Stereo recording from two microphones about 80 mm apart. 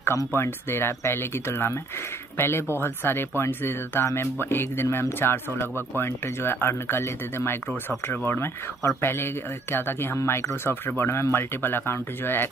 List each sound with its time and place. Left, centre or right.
0.0 s speech: left